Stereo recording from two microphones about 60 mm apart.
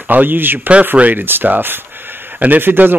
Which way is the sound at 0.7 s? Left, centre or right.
Right.